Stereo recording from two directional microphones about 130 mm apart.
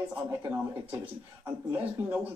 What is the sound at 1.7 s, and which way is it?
Speech, 10° right (ahead or behind).